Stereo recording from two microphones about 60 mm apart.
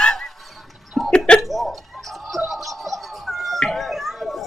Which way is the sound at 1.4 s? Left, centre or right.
Centre.